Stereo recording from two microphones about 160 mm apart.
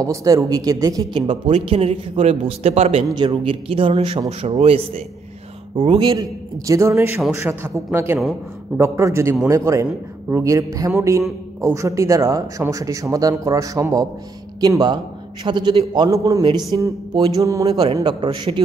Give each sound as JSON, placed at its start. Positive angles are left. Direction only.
{"t": 0.0, "sound": "a man's voice", "side_deg": -20}